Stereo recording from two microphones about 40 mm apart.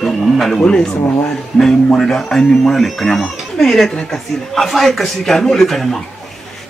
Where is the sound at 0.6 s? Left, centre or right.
Centre.